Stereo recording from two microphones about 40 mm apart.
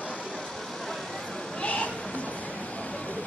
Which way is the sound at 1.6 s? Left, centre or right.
Left.